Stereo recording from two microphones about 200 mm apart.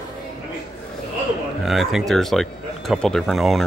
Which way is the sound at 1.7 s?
Centre (ahead or behind).